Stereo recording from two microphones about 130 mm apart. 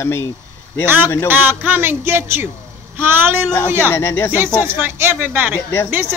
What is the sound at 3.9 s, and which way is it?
Speech, 20° left (ahead or behind).